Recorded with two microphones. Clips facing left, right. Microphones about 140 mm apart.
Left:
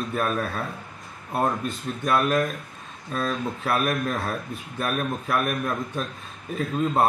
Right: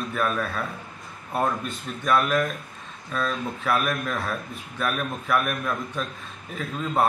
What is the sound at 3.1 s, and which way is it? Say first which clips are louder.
Speech: left 1 dB; 25° left (ahead or behind).